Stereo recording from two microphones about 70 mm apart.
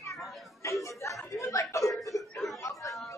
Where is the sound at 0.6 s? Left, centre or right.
Left.